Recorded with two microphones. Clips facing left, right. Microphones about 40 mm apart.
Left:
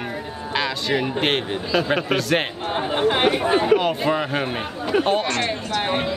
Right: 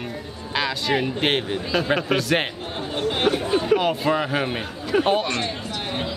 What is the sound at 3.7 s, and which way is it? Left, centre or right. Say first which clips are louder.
Speech: left 1 dB; centre.